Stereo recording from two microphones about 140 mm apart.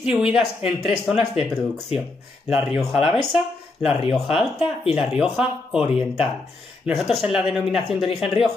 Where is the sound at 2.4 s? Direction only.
10° right (ahead or behind).